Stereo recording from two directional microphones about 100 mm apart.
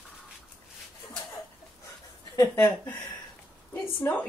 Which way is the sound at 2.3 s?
30° left (ahead or behind).